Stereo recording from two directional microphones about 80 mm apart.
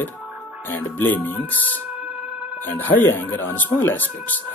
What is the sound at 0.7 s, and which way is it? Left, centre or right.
Speech, left.